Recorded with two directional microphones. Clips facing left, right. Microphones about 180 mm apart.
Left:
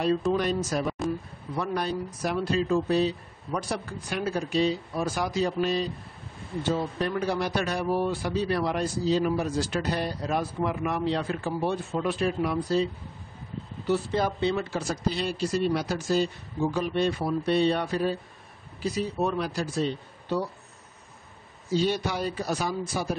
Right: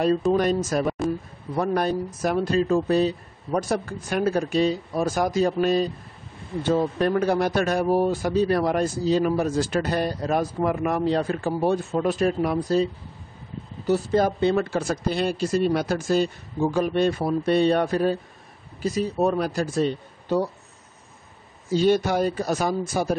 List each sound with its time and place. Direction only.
0.3 s a man's voice: 45° right (ahead or behind)
13.8 s a man's voice: 45° right (ahead or behind)
21.7 s a man's voice: 50° right (ahead or behind)